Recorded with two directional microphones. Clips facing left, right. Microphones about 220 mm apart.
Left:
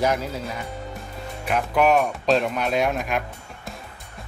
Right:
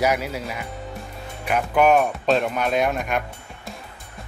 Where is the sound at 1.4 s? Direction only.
5° right (ahead or behind).